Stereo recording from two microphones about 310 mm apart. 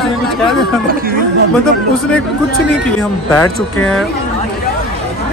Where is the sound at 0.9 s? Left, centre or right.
Right.